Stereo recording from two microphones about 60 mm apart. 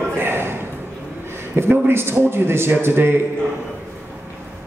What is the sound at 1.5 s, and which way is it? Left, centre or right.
A man's voice, right.